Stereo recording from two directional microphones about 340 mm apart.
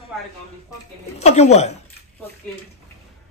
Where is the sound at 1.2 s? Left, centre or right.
Centre.